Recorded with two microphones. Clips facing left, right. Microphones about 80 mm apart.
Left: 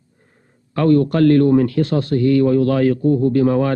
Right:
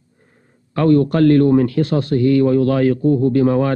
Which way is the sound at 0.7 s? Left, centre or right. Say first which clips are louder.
Right 1 dB; right.